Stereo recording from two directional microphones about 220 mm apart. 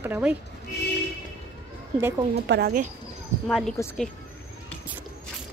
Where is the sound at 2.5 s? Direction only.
45° right (ahead or behind).